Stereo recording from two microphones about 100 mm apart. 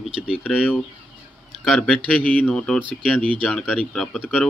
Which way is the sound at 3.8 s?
5° left (ahead or behind).